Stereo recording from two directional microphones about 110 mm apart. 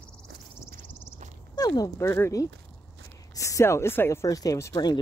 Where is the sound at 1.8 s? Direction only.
25° left (ahead or behind).